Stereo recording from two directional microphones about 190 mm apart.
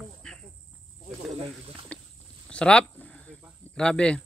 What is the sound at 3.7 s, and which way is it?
Speech, 5° left (ahead or behind).